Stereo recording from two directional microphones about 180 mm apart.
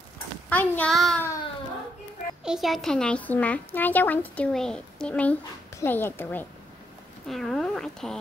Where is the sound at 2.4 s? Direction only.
Centre (ahead or behind).